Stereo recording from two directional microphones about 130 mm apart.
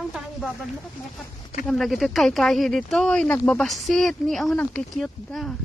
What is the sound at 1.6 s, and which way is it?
Speech, centre (ahead or behind).